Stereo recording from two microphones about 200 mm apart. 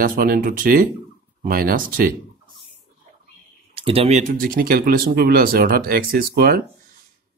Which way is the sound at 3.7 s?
30° right (ahead or behind).